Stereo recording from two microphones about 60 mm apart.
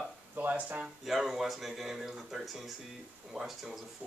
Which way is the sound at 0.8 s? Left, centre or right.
Centre.